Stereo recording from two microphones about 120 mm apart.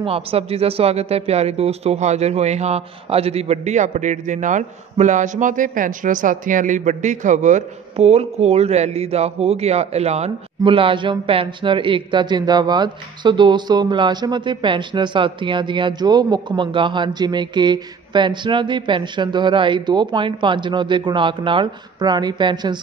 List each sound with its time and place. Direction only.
0.0 s speech: 55° right (ahead or behind)
10.6 s speech: 45° right (ahead or behind)